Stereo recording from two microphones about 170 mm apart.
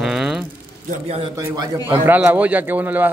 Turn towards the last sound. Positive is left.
turn(degrees=-10)  # may be behind; listen again after turning